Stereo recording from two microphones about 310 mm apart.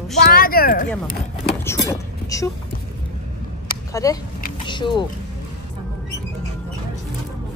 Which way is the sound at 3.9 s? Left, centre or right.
Centre.